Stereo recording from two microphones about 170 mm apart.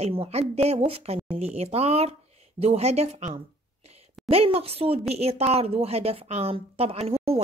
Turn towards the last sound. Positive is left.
turn(degrees=-35)  # may be behind; listen again after turning